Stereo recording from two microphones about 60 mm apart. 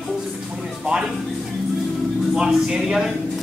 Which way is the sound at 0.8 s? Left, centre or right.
Centre.